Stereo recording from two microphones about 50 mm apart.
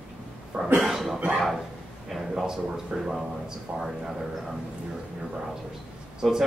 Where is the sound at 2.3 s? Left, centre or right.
Centre.